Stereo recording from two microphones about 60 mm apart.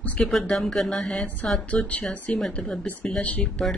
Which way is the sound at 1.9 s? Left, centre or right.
Left.